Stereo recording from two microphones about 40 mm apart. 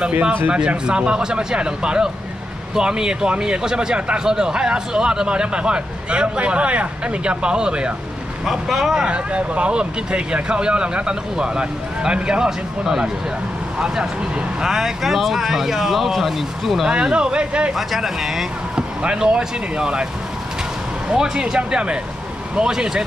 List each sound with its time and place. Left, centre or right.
0.5 s speech: right
8.5 s speech: centre
9.0 s speech: right; by 16.9 s centre
16.9 s speech: right
17.7 s speech: centre
21.1 s speech: right